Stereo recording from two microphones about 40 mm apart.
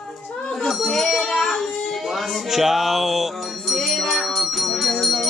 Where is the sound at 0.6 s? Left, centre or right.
Centre.